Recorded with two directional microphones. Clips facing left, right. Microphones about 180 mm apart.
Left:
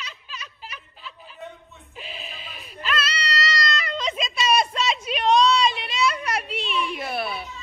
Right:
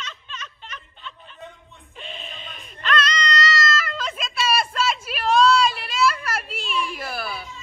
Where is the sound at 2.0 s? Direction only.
5° left (ahead or behind).